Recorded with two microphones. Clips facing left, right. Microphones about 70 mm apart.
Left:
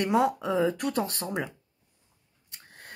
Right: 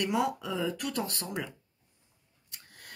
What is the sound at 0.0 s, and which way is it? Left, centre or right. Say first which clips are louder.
Speech: left 5 dB; left.